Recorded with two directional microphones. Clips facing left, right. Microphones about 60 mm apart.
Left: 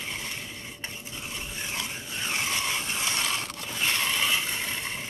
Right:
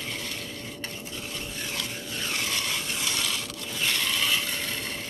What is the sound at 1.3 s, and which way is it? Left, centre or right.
Vehicle, left.